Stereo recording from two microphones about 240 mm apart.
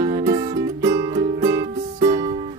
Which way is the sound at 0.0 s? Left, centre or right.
Centre.